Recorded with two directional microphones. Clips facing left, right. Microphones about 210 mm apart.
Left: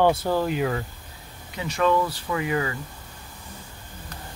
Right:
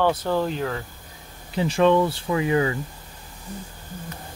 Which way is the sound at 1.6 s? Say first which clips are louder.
Right 4 dB; 30° right (ahead or behind).